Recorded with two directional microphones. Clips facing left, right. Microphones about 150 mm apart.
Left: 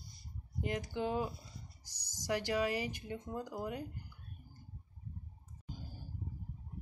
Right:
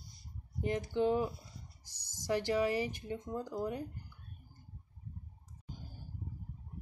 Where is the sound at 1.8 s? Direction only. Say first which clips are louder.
Right 1 dB; 25° right (ahead or behind).